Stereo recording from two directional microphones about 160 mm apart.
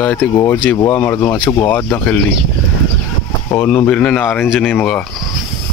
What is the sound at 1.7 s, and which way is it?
Speech, 10° left (ahead or behind).